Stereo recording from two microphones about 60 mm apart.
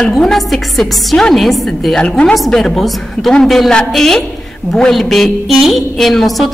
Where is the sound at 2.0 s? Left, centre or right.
Centre.